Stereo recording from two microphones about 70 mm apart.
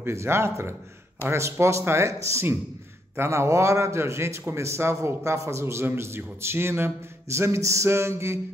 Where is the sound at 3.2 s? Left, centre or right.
Right.